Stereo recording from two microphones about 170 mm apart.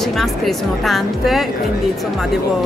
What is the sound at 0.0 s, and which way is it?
A woman's voice, centre (ahead or behind).